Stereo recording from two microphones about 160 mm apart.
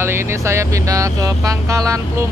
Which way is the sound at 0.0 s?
15° right (ahead or behind).